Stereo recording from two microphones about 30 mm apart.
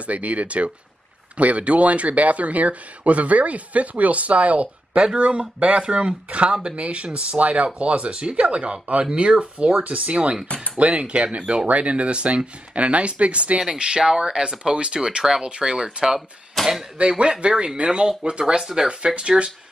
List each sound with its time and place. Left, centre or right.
0.0 s speech: right
4.9 s speech: right
13.6 s speech: right
16.6 s arrow: centre
17.2 s speech: right
18.6 s speech: centre
18.9 s speech: right